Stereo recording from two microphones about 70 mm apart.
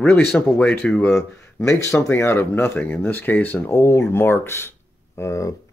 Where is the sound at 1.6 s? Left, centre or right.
Left.